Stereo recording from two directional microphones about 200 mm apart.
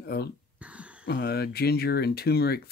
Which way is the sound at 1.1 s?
50° left (ahead or behind).